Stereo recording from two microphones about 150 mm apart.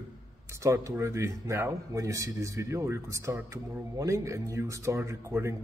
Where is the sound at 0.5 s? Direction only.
20° right (ahead or behind).